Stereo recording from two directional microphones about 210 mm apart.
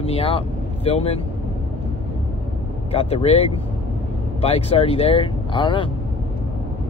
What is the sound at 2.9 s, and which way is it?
Speech, 30° left (ahead or behind).